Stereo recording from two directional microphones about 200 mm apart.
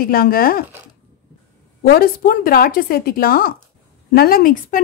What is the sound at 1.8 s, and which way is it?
A woman's voice, 50° left (ahead or behind).